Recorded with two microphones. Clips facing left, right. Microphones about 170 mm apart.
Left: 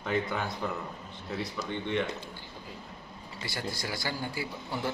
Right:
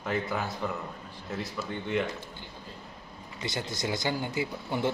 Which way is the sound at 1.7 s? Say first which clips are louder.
Right 1 dB; 5° right (ahead or behind).